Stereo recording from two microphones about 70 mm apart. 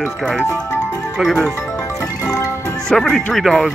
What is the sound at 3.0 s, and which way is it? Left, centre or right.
Speech, centre.